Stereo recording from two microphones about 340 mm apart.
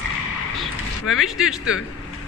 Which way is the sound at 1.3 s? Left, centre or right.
Centre.